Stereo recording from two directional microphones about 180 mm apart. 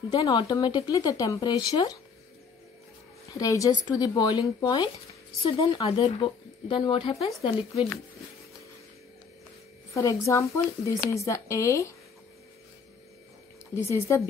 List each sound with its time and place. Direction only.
0.1 s speech: 25° left (ahead or behind)
3.3 s speech: 20° left (ahead or behind)
10.2 s speech: 15° left (ahead or behind)
13.8 s speech: 15° left (ahead or behind)